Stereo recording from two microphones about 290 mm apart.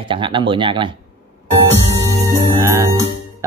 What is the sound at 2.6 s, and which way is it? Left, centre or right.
Jingle bell, centre.